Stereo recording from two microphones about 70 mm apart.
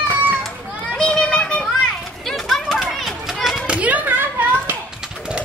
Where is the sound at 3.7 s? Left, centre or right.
Right.